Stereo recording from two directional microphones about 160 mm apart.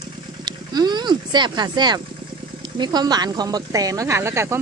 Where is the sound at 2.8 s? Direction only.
25° right (ahead or behind).